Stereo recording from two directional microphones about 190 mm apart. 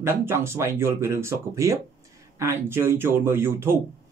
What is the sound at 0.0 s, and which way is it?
Speech, 15° right (ahead or behind).